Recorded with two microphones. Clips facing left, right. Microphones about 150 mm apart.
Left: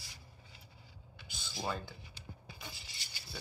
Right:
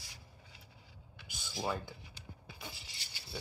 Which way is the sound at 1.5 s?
5° right (ahead or behind).